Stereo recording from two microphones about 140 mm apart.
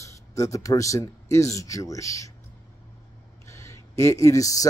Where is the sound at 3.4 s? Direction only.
20° left (ahead or behind).